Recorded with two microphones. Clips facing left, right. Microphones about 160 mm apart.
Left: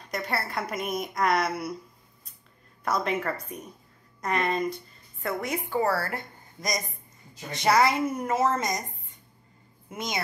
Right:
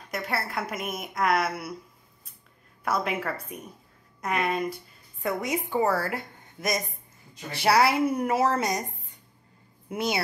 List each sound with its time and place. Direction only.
0.1 s a woman's voice: 5° right (ahead or behind)
2.8 s a woman's voice: 5° right (ahead or behind)
9.8 s a woman's voice: 10° right (ahead or behind)